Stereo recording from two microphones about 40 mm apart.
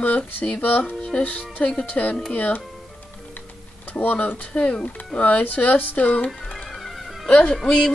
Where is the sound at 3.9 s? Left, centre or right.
Left.